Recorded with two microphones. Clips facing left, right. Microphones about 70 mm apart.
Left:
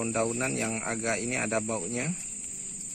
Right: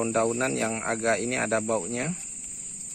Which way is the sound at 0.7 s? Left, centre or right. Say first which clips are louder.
Right 5 dB; right.